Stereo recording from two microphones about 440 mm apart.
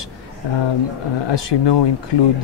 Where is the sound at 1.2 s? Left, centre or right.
Left.